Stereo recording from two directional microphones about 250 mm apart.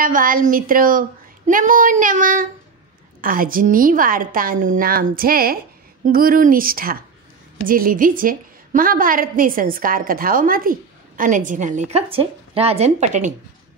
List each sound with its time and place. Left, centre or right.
0.0 s a woman's voice: right